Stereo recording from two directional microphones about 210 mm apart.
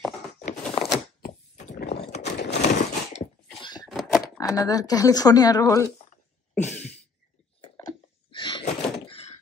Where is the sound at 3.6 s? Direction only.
20° left (ahead or behind).